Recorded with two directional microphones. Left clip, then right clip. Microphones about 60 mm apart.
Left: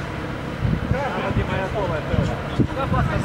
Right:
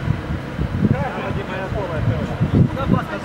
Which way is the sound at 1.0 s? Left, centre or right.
Centre.